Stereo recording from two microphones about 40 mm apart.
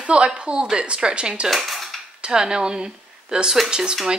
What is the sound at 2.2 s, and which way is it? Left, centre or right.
A woman's voice, centre.